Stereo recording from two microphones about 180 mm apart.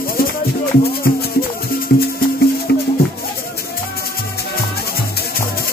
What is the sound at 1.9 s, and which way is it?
Music, 60° left (ahead or behind).